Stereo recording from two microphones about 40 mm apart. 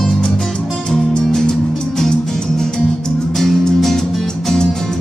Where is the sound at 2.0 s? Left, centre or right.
Centre.